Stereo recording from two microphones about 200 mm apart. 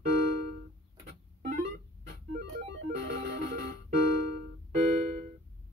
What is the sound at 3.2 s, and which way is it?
Music, 50° right (ahead or behind).